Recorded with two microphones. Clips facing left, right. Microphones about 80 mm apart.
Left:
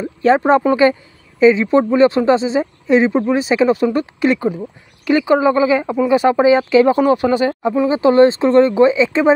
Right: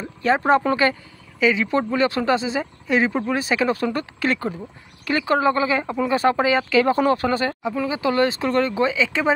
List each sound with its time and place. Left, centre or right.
0.4 s speech: centre